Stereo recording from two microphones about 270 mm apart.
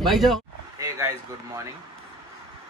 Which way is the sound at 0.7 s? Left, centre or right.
Centre.